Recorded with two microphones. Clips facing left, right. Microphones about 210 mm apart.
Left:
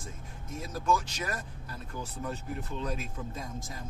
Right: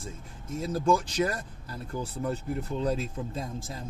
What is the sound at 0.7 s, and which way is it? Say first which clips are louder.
Speech: right 5 dB; 30° right (ahead or behind).